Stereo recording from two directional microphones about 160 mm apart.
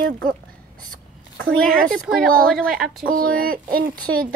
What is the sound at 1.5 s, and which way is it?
Speech, 5° left (ahead or behind).